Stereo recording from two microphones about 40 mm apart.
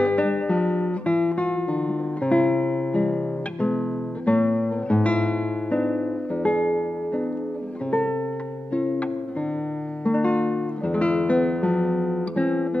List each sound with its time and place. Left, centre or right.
0.0 s music: left
4.3 s music: left
10.0 s music: left